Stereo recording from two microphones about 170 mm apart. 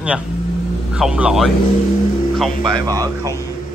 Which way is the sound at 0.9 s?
5° right (ahead or behind).